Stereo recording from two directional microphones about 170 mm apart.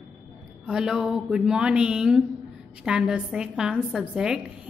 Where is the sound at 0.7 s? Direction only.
5° right (ahead or behind).